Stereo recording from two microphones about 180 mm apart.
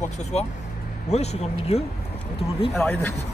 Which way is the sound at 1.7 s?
35° left (ahead or behind).